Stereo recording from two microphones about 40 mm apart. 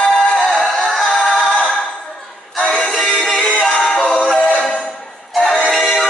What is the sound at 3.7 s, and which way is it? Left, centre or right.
A capella, centre.